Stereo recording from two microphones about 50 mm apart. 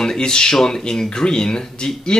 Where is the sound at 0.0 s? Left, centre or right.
Centre.